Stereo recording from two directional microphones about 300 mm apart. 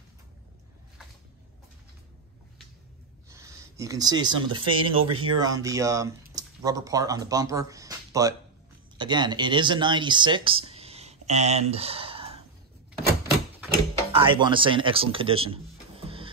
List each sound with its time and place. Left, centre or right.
3.3 s speech: centre
14.1 s speech: centre